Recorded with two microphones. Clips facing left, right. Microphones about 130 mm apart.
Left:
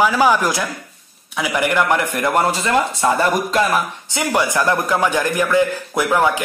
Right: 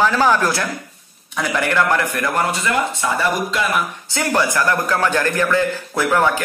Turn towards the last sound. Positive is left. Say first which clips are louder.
# even
turn(degrees=15)  # may be behind; listen again after turning